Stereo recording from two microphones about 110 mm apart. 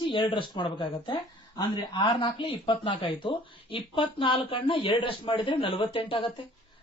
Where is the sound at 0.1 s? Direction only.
50° left (ahead or behind).